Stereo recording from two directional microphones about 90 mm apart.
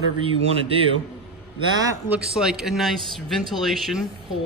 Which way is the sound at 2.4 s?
5° right (ahead or behind).